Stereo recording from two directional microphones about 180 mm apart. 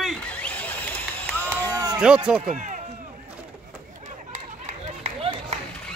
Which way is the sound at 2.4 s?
40° right (ahead or behind).